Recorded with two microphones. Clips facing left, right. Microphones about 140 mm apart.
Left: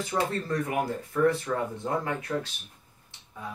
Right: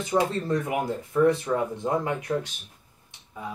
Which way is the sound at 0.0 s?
20° right (ahead or behind).